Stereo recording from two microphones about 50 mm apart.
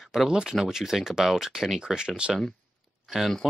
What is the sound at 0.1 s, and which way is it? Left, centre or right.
Speech, centre.